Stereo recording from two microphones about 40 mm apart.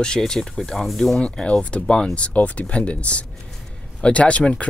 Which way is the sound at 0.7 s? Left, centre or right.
Centre.